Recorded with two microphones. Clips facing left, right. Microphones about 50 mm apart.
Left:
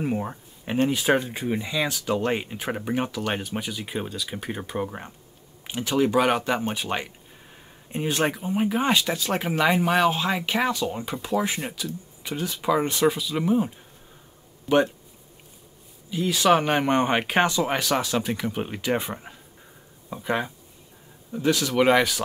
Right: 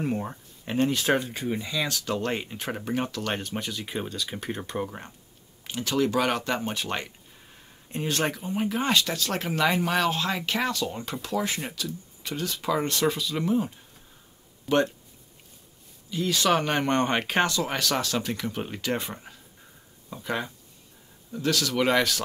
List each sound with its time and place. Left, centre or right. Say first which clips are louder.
0.0 s speech: left 2 dB; centre
16.1 s speech: left 4 dB; centre